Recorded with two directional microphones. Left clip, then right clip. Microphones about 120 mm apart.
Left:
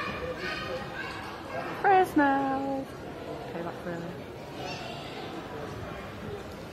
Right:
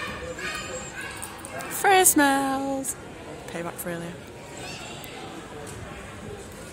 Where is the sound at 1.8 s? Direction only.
35° right (ahead or behind).